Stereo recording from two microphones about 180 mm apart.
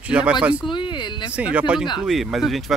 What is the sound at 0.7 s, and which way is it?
Speech, 25° left (ahead or behind).